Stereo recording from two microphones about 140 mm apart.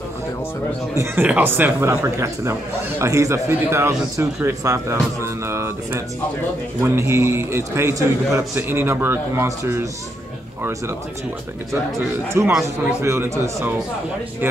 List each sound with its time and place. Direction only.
0.9 s a man's voice: 15° right (ahead or behind)
12.4 s a man's voice: 20° right (ahead or behind)